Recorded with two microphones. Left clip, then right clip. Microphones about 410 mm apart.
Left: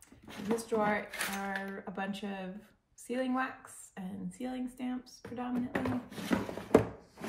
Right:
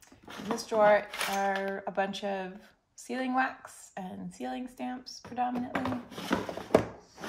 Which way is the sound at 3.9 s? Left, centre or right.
Centre.